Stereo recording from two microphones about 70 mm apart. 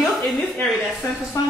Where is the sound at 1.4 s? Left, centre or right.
Left.